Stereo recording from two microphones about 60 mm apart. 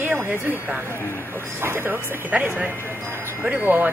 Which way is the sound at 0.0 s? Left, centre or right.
Right.